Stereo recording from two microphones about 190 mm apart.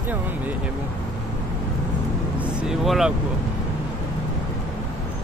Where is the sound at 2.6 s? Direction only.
Centre (ahead or behind).